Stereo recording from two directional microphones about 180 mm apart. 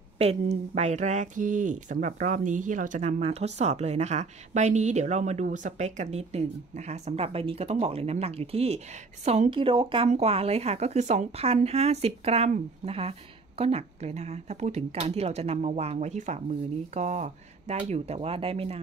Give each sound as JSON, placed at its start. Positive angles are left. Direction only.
{"t": 0.2, "sound": "speech", "side_deg": -35}